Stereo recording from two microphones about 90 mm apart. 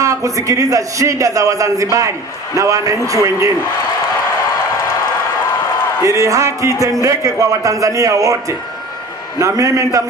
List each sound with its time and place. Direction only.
0.0 s a man's voice: 35° right (ahead or behind)
6.0 s a man's voice: 40° right (ahead or behind)